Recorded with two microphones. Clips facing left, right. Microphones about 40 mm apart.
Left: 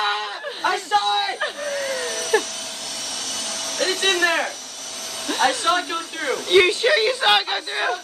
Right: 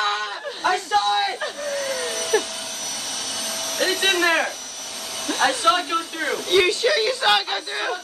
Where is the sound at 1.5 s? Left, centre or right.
Centre.